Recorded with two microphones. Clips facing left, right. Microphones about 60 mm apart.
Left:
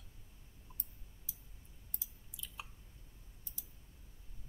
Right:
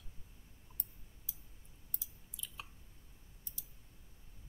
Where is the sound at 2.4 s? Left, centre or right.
Centre.